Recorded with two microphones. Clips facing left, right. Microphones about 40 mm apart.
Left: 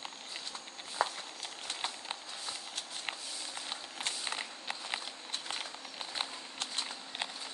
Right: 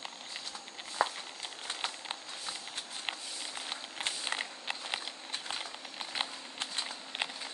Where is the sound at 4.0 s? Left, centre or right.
Right.